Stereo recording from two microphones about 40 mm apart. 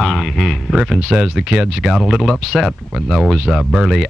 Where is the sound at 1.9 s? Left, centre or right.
Centre.